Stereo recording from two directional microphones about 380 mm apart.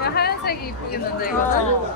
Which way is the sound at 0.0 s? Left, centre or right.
Left.